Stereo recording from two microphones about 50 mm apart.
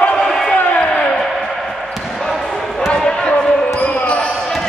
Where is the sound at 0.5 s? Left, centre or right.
Left.